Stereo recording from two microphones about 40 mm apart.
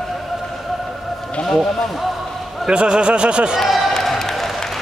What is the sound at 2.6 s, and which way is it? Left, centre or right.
Speech, right.